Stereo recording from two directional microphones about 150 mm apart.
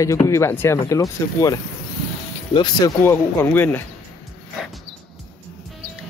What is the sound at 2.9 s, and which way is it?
Speech, 15° left (ahead or behind).